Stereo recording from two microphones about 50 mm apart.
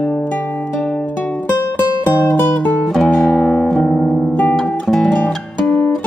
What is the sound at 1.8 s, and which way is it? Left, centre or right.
Music, left.